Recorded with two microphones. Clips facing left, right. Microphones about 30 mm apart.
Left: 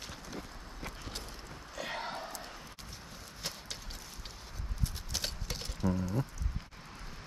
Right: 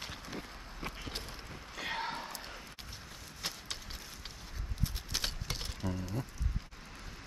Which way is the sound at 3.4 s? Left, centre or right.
Centre.